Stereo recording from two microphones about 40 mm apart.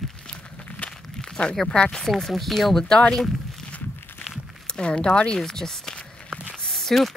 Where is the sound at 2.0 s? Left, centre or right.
Centre.